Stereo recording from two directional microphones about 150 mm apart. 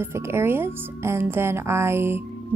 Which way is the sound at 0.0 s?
15° right (ahead or behind).